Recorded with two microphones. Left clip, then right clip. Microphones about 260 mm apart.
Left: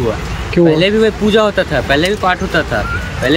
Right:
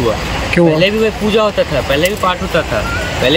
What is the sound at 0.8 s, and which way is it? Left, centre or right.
Speech, left.